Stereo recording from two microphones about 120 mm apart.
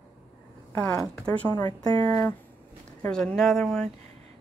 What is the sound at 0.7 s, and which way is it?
Speech, 15° left (ahead or behind).